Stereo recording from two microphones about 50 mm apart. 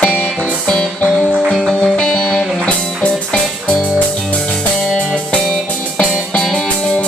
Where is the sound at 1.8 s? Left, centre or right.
Centre.